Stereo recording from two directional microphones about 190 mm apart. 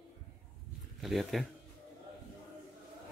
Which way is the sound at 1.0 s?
Centre (ahead or behind).